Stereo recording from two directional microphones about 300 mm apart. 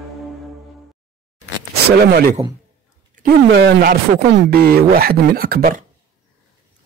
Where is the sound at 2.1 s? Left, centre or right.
Right.